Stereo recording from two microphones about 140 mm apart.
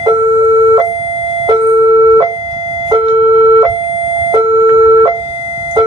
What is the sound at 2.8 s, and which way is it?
Siren, 40° right (ahead or behind).